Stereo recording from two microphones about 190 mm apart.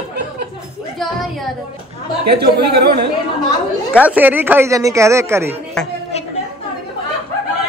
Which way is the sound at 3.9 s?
10° right (ahead or behind).